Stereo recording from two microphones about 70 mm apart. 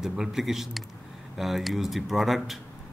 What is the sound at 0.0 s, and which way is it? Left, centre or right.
Speech, centre.